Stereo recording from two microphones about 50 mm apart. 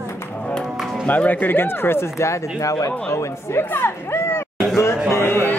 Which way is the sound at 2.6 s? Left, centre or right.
Left.